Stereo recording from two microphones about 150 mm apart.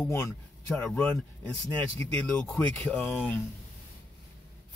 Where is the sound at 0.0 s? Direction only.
15° left (ahead or behind).